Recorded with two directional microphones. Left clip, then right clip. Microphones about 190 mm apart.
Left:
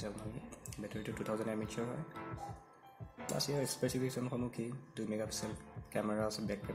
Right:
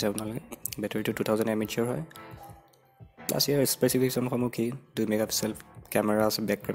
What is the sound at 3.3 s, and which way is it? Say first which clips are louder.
Speech: right 11 dB; 50° right (ahead or behind).